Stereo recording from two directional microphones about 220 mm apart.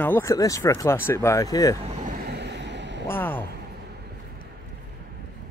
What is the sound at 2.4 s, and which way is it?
Vehicle, 50° right (ahead or behind).